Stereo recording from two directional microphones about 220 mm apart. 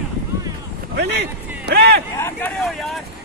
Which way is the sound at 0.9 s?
50° right (ahead or behind).